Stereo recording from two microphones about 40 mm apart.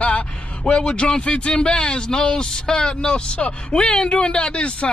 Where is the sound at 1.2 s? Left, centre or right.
Left.